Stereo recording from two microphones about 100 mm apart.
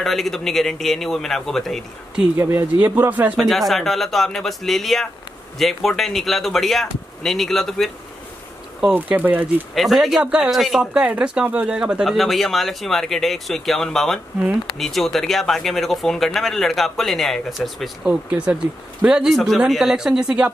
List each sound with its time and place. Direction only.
0.0 s speech: centre (ahead or behind)
2.3 s speech: 25° right (ahead or behind)
3.3 s speech: centre (ahead or behind)
8.9 s speech: 20° right (ahead or behind)
9.8 s speech: centre (ahead or behind)
18.0 s speech: 10° right (ahead or behind)